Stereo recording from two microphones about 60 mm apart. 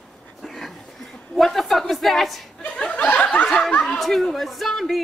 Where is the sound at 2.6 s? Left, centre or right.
Centre.